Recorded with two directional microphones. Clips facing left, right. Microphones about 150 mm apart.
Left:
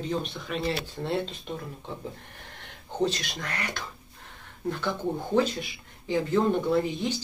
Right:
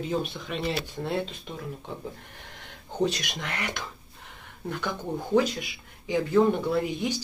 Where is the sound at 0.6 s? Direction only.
15° right (ahead or behind).